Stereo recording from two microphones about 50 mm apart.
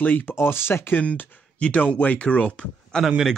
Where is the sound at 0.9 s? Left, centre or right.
Left.